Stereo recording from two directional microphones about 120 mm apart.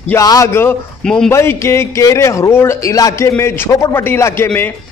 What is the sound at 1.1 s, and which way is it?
Speech, 5° left (ahead or behind).